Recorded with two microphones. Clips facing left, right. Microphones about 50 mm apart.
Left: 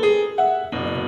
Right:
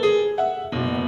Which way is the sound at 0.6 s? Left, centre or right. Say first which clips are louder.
Even; left.